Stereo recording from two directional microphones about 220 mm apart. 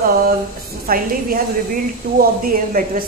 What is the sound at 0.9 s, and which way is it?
A woman's voice, 40° right (ahead or behind).